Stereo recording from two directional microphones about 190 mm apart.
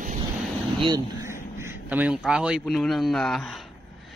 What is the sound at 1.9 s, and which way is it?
A man's voice, 5° right (ahead or behind).